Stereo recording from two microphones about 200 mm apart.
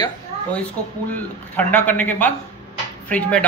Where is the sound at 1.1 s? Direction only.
10° left (ahead or behind).